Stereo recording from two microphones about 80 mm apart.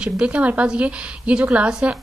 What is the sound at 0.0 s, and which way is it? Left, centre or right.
A woman's voice, centre.